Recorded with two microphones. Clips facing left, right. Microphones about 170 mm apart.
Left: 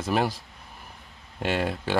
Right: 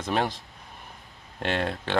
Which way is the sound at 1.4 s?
5° left (ahead or behind).